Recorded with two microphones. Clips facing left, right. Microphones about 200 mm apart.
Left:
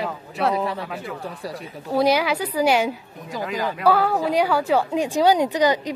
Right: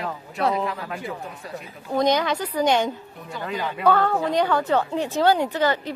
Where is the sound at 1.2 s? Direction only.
35° left (ahead or behind).